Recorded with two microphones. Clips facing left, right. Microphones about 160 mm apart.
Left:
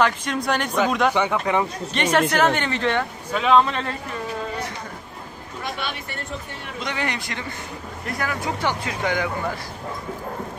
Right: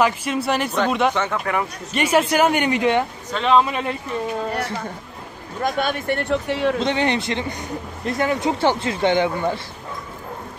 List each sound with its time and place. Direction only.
0.0 s speech: 5° right (ahead or behind)
1.1 s speech: 15° left (ahead or behind)
2.0 s speech: 10° right (ahead or behind)
3.3 s speech: 5° left (ahead or behind)
3.6 s speech: 10° right (ahead or behind)
5.6 s speech: 45° right (ahead or behind); by 6.8 s 90° right
6.8 s speech: 25° right (ahead or behind)